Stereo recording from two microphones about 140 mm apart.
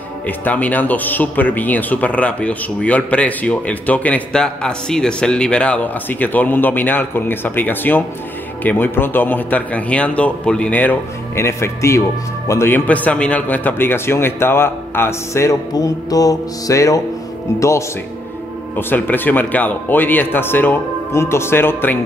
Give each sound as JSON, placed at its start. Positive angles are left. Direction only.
{"t": 0.5, "sound": "a man's voice", "side_deg": 10}